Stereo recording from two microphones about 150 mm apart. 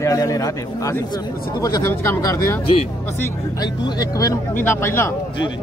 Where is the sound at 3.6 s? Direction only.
25° left (ahead or behind).